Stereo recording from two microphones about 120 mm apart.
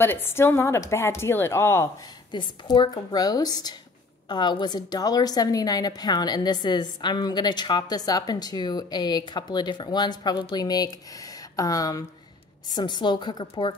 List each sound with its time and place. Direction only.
0.0 s a woman's voice: 20° left (ahead or behind)
2.3 s a woman's voice: 40° left (ahead or behind)